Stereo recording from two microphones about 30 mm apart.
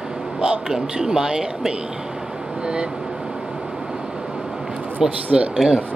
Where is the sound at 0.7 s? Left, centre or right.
Centre.